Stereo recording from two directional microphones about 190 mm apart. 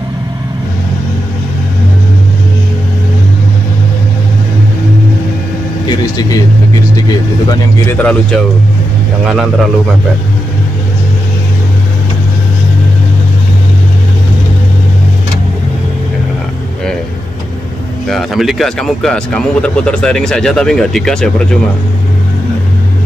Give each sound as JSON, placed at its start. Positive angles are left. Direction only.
{"t": 5.9, "sound": "vehicle", "side_deg": 20}
{"t": 8.0, "sound": "speech", "side_deg": 5}
{"t": 18.0, "sound": "speech", "side_deg": 0}